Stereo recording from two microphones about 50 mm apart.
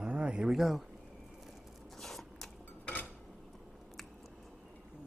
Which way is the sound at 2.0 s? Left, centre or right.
Centre.